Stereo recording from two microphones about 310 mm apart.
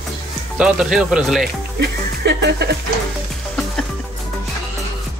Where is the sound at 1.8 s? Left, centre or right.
Right.